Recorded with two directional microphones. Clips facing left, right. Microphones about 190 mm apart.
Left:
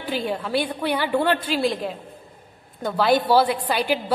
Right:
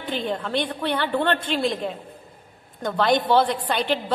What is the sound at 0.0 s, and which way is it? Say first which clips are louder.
A woman's voice: left 1 dB; 5° left (ahead or behind).